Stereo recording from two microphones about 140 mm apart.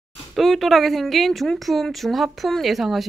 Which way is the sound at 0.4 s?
Centre (ahead or behind).